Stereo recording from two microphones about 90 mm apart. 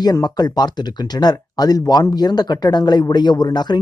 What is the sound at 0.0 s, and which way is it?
Speech, 50° left (ahead or behind).